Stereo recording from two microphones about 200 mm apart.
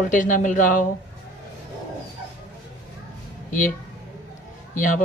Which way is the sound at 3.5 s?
40° left (ahead or behind).